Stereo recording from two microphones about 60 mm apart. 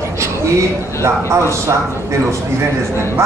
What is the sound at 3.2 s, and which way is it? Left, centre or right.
Speech, right.